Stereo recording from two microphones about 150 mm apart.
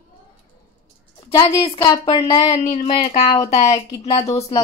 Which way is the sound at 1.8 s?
30° left (ahead or behind).